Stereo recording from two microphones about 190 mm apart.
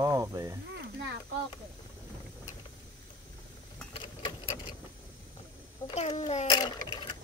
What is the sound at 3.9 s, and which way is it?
Sewing machine, 25° left (ahead or behind).